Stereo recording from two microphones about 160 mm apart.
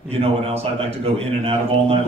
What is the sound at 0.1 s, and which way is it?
A man's voice, 35° right (ahead or behind).